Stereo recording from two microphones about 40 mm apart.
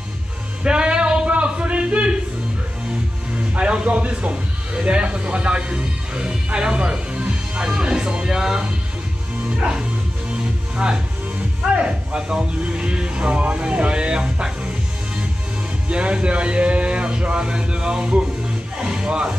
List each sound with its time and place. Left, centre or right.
0.7 s a sound: right
3.5 s speech: right; by 8.5 s centre
9.6 s speech: centre
11.7 s speech: right
15.9 s speech: right
18.8 s music: centre